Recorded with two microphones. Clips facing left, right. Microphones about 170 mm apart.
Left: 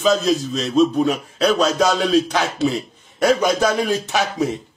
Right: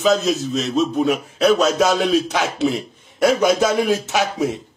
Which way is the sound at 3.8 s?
10° right (ahead or behind).